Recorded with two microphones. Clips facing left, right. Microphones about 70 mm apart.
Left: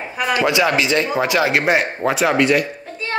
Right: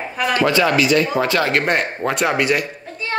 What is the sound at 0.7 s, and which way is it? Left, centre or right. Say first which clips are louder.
Speech: right 2 dB; left.